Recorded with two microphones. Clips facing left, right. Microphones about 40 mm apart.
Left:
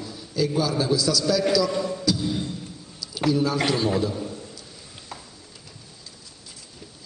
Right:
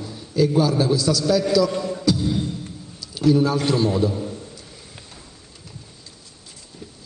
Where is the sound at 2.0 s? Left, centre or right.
Right.